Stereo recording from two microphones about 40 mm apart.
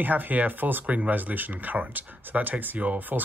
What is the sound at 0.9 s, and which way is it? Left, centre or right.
Speech, right.